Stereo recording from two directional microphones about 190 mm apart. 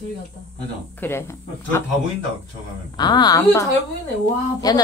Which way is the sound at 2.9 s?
20° left (ahead or behind).